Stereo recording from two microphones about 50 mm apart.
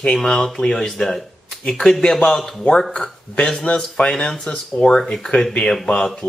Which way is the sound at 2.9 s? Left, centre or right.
Centre.